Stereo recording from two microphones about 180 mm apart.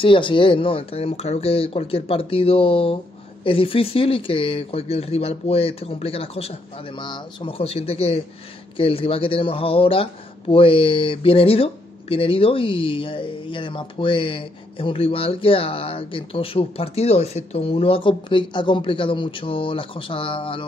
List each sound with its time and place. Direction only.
0.0 s speech: 30° left (ahead or behind)